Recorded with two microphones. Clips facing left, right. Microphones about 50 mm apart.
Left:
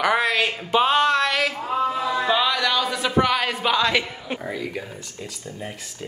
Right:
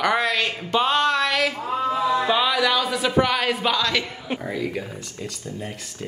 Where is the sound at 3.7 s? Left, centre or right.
Centre.